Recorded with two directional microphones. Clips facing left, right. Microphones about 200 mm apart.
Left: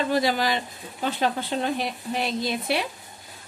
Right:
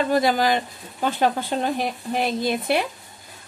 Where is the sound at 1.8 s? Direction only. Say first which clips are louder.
Right 3 dB; 50° right (ahead or behind).